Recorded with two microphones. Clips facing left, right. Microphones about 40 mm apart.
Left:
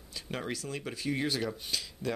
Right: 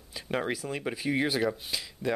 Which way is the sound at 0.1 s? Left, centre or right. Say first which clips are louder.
Right 6 dB; centre.